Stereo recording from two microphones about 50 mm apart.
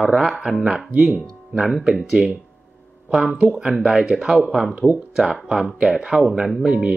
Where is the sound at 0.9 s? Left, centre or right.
Right.